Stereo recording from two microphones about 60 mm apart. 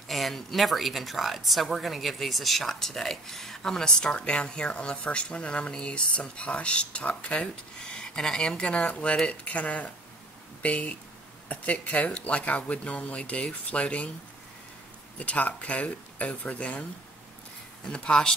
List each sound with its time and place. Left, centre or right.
0.1 s speech: centre; by 14.1 s left
15.1 s speech: left
17.9 s speech: centre